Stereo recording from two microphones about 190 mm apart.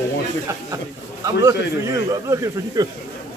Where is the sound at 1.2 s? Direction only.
15° right (ahead or behind).